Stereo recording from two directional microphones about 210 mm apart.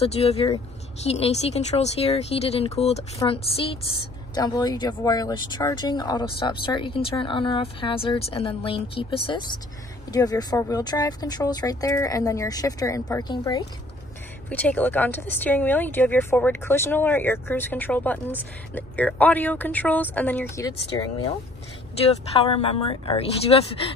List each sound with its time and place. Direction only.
0.0 s speech: 30° left (ahead or behind)
14.5 s speech: 10° left (ahead or behind)
22.3 s speech: 25° left (ahead or behind)